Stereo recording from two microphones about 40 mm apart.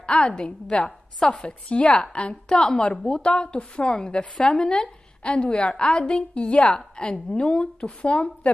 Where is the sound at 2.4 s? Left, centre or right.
Centre.